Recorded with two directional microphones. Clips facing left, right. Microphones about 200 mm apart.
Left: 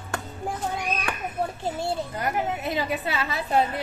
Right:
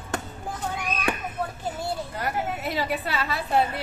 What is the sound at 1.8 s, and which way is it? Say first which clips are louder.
A woman's voice: left 2 dB; 20° left (ahead or behind).